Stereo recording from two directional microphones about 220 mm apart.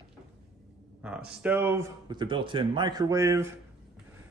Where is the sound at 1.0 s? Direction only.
5° right (ahead or behind).